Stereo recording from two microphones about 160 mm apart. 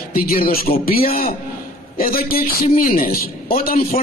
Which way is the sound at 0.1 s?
65° left (ahead or behind).